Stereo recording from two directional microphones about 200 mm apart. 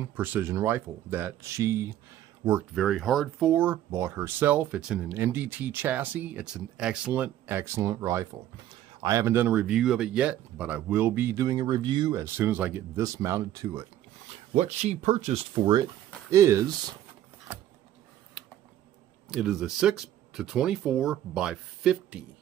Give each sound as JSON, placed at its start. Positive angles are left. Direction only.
{"t": 0.0, "sound": "speech", "side_deg": -10}
{"t": 2.7, "sound": "speech", "side_deg": 0}
{"t": 14.5, "sound": "speech", "side_deg": -35}
{"t": 19.3, "sound": "speech", "side_deg": -5}